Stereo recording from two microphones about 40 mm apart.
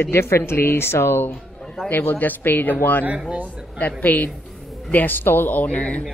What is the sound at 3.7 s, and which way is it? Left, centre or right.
A woman's voice, left.